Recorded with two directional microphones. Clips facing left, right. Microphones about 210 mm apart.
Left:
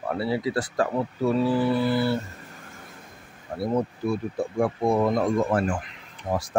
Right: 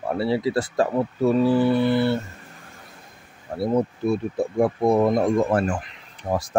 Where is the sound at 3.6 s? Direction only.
25° right (ahead or behind).